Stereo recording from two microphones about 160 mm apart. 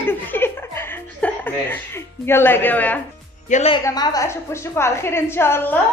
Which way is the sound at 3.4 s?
50° left (ahead or behind).